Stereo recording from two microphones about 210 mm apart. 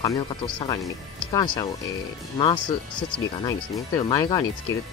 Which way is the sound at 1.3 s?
20° left (ahead or behind).